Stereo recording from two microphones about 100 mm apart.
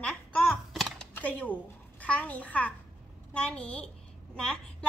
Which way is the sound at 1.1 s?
15° left (ahead or behind).